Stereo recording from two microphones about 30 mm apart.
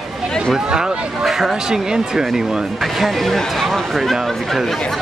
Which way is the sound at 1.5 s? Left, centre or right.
Right.